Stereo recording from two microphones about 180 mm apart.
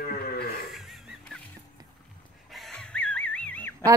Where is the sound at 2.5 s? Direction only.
Centre (ahead or behind).